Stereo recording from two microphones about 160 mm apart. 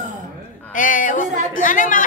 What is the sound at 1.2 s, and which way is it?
Speech, 50° right (ahead or behind).